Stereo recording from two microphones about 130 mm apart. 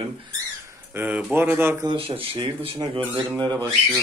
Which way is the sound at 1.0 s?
10° right (ahead or behind).